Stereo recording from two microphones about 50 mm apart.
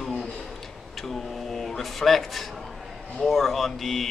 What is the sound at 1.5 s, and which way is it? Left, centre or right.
A woman's voice, centre.